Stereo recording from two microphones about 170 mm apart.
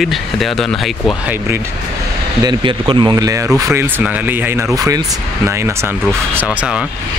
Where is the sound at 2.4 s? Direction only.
25° right (ahead or behind).